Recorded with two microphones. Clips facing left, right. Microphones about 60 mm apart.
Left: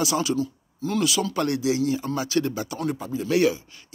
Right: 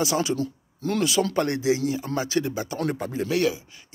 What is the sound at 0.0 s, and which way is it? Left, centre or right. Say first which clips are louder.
Speech: even; right.